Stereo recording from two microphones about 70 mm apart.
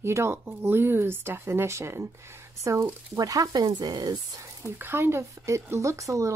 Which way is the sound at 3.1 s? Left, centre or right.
Right.